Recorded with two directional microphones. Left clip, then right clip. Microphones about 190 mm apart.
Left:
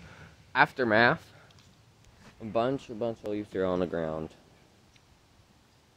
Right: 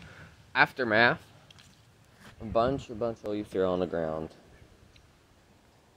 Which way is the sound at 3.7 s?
20° left (ahead or behind).